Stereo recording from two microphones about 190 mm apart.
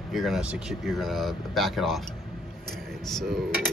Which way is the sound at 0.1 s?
Centre (ahead or behind).